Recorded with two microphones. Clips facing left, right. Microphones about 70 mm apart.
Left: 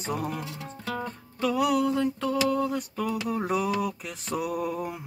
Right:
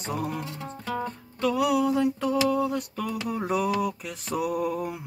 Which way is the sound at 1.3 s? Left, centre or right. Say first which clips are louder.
Right 1 dB; centre.